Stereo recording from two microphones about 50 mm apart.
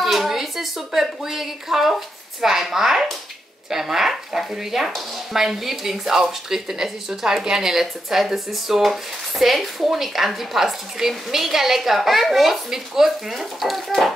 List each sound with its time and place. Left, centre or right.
0.0 s speech: centre